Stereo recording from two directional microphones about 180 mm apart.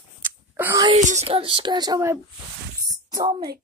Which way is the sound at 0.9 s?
40° right (ahead or behind).